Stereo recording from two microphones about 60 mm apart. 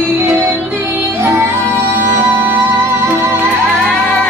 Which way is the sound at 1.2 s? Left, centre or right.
Right.